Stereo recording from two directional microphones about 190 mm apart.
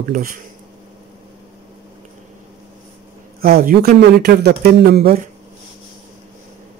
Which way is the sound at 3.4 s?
50° right (ahead or behind).